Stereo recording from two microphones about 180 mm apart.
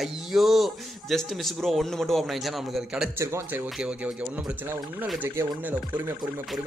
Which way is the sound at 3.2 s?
15° right (ahead or behind).